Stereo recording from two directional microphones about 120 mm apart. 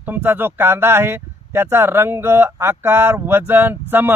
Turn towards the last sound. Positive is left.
turn(degrees=-15)  # may be behind; listen again after turning